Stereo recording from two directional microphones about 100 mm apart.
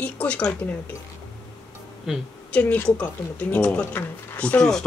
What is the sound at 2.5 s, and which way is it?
Speech, 15° left (ahead or behind).